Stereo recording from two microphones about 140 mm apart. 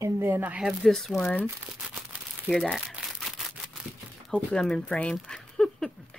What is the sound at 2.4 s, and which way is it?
Crumpling, centre (ahead or behind).